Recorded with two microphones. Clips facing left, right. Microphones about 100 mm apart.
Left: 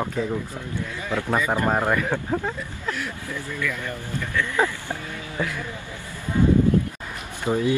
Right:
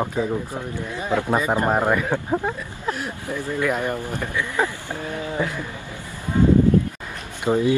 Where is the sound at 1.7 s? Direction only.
10° right (ahead or behind).